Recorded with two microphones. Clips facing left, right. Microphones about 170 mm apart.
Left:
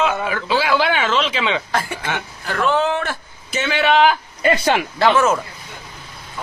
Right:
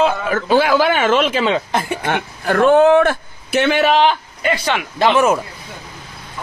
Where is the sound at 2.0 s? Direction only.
50° right (ahead or behind).